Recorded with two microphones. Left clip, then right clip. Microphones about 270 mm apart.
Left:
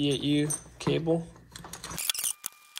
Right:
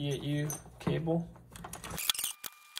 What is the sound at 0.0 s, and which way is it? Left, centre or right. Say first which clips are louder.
Speech: left 9 dB; centre.